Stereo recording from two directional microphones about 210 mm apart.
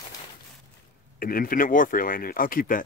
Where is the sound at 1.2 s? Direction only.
45° left (ahead or behind).